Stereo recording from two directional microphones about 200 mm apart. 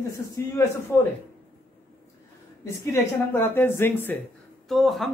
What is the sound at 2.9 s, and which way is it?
Speech, 10° left (ahead or behind).